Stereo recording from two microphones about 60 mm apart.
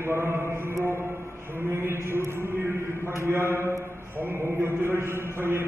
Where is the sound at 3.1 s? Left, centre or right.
Right.